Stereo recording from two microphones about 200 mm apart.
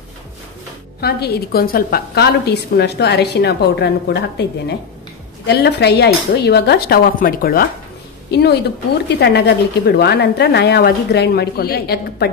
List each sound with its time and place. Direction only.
1.0 s a woman's voice: 50° left (ahead or behind)
5.5 s a woman's voice: 55° left (ahead or behind)